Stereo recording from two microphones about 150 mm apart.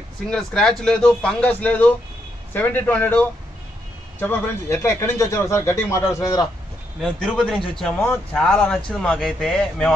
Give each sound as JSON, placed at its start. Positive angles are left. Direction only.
{"t": 0.3, "sound": "a man's voice", "side_deg": 5}
{"t": 7.0, "sound": "speech", "side_deg": 0}